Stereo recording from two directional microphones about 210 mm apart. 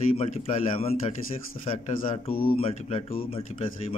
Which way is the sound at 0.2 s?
25° left (ahead or behind).